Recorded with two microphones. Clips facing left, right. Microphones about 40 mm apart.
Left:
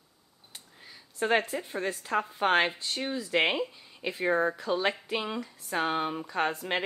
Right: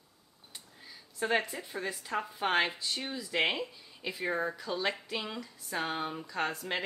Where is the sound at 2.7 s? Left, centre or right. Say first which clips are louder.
Left 2 dB; left.